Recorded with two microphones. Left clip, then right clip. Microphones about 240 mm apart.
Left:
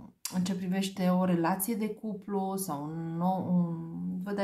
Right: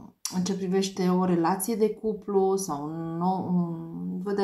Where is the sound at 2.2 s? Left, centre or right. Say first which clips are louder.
Right 9 dB; left.